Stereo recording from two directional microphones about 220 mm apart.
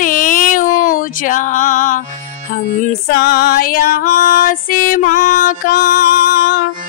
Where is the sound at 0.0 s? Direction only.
35° left (ahead or behind).